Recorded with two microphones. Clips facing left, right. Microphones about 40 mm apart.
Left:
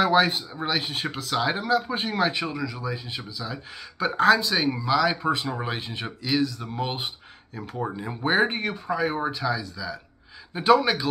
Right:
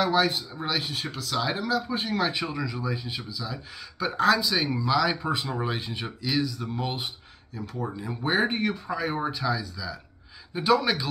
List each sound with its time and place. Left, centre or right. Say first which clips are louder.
0.0 s speech: left 3 dB; centre
7.7 s speech: left 3 dB; left
8.3 s speech: left 2 dB; centre